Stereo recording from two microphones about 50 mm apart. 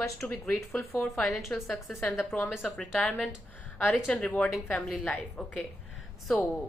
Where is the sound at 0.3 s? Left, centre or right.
Left.